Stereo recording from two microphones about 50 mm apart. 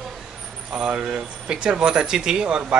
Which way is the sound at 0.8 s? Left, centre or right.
Right.